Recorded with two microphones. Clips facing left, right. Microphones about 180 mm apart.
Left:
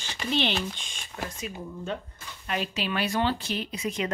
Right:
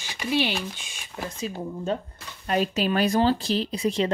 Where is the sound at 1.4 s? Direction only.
30° right (ahead or behind).